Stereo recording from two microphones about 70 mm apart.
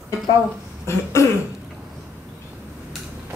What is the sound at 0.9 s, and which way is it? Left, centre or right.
Throat clearing, left.